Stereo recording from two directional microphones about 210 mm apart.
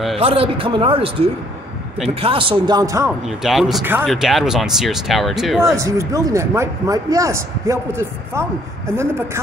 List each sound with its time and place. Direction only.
0.2 s speech: 25° right (ahead or behind)
3.3 s speech: centre (ahead or behind)
5.8 s speech: 15° right (ahead or behind)